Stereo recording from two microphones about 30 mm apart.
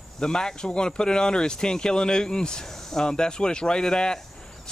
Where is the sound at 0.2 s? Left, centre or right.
Left.